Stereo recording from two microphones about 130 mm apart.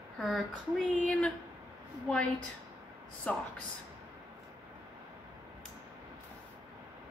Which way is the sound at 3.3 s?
10° left (ahead or behind).